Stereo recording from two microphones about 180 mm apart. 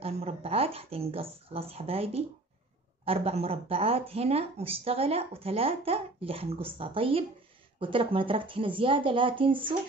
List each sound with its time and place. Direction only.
0.0 s speech: 35° right (ahead or behind)